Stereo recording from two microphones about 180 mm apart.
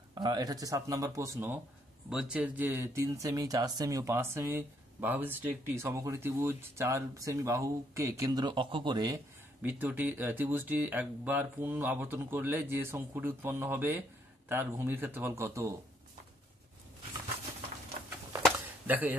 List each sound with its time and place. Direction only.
0.1 s speech: 25° right (ahead or behind)
9.6 s speech: 10° right (ahead or behind)
18.9 s speech: 10° right (ahead or behind)